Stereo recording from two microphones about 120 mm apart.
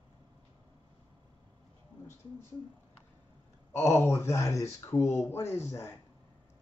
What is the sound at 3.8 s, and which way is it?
Speech, 20° left (ahead or behind).